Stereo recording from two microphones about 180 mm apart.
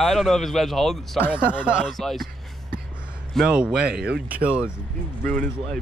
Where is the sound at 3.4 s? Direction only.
5° right (ahead or behind).